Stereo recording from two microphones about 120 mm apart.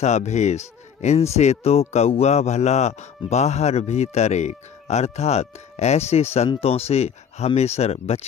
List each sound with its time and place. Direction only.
0.0 s speech: 70° left (ahead or behind)